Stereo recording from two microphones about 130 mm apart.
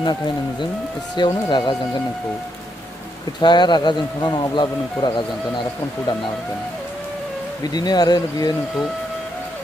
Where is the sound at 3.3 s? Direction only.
35° left (ahead or behind).